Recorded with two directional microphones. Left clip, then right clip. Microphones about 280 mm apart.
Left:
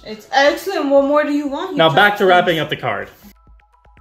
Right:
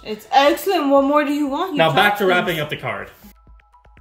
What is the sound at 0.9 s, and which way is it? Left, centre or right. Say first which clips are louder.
Speech: left 4 dB; right.